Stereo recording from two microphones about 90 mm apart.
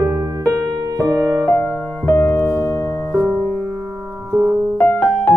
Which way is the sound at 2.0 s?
30° left (ahead or behind).